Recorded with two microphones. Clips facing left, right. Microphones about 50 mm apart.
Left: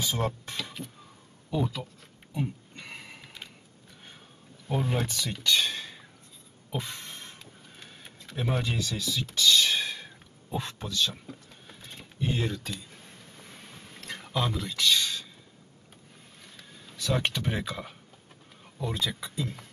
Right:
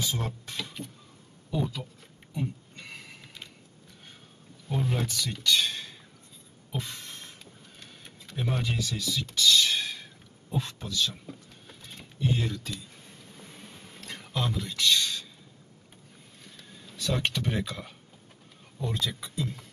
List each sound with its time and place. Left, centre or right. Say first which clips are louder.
0.1 s speech: left 4 dB; centre
0.8 s vehicle: even; centre
1.5 s speech: left 1 dB; centre
2.3 s sniff: left 1 dB; centre
4.7 s speech: left 1 dB; centre
6.7 s a sound: left 1 dB; centre
7.7 s printer: left 2 dB; centre
8.3 s speech: left 1 dB; centre
10.5 s speech: even; left
10.9 s a sound: left 4 dB; centre
12.4 s speech: left 1 dB; centre
12.7 s a sound: even; centre
16.4 s a sound: right 1 dB; centre
18.8 s speech: left 1 dB; centre